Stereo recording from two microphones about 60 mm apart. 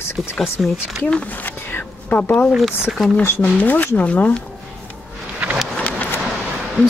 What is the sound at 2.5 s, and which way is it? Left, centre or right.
Speech, centre.